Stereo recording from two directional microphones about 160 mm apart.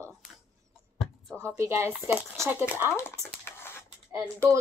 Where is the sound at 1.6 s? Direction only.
15° right (ahead or behind).